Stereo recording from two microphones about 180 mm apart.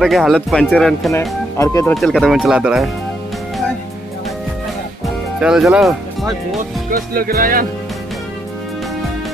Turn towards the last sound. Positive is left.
turn(degrees=-50)  # may be behind; listen again after turning